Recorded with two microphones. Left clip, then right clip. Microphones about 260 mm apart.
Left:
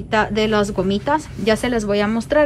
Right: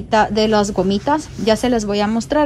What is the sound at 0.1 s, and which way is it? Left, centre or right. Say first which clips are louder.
A woman's voice: right 3 dB; centre.